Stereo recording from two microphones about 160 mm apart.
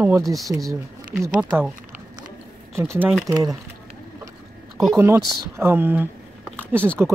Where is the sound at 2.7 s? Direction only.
15° right (ahead or behind).